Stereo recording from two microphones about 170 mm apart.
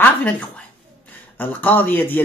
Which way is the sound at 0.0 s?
10° left (ahead or behind).